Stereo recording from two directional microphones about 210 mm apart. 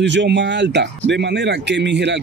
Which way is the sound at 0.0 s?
55° right (ahead or behind).